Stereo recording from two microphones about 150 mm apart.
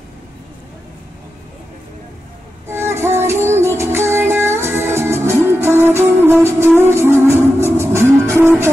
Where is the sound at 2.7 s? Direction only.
15° right (ahead or behind).